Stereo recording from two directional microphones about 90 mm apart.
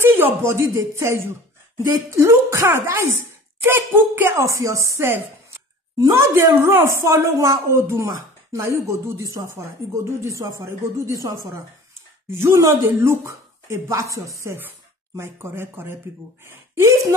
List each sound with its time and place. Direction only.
0.0 s a sound: 25° right (ahead or behind)
0.5 s a woman's voice: 30° right (ahead or behind)
7.3 s speech: 40° right (ahead or behind)
7.7 s speech: 30° right (ahead or behind)
12.3 s speech: 25° right (ahead or behind)